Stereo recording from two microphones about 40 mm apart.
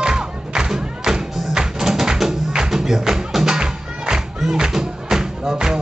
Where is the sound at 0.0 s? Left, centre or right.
Centre.